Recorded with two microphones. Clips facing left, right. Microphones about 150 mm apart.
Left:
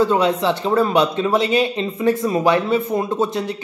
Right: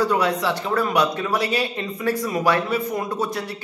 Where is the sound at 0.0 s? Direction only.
25° left (ahead or behind).